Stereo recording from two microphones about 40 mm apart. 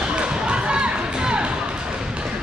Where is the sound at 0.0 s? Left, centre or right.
Right.